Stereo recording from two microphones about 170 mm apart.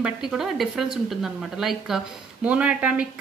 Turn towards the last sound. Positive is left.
turn(degrees=-5)  # may be behind; listen again after turning